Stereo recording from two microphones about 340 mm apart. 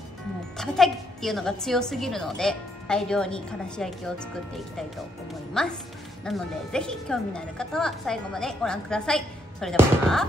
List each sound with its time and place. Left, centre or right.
0.6 s speech: centre